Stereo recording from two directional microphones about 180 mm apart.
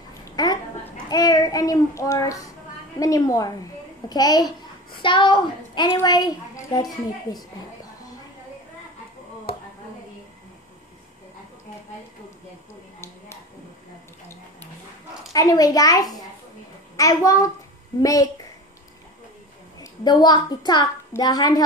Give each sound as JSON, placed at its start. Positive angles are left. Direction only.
{"t": 0.4, "sound": "a sound", "side_deg": 20}
{"t": 1.1, "sound": "a woman's voice", "side_deg": 20}
{"t": 15.3, "sound": "a woman's voice", "side_deg": 20}
{"t": 19.8, "sound": "a woman's voice", "side_deg": 20}